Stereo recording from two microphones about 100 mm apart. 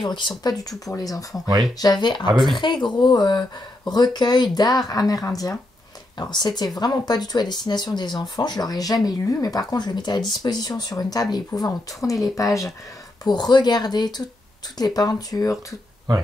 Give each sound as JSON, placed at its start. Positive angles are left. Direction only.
{"t": 0.0, "sound": "speech", "side_deg": 55}
{"t": 0.4, "sound": "speech", "side_deg": 40}
{"t": 6.1, "sound": "speech", "side_deg": 45}
{"t": 16.1, "sound": "speech", "side_deg": -45}